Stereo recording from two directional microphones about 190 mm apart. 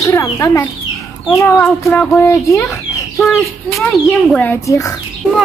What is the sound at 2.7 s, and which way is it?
Speech, centre (ahead or behind).